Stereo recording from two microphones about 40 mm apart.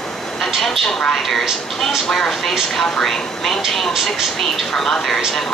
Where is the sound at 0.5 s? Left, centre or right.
Centre.